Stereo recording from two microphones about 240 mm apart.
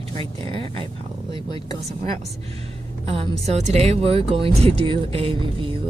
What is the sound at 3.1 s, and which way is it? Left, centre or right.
Speech, right.